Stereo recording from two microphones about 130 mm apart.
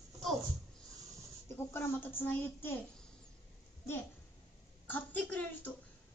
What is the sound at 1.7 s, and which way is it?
A woman's voice, 15° left (ahead or behind).